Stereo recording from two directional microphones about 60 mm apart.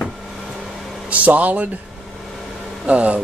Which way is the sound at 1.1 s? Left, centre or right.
Right.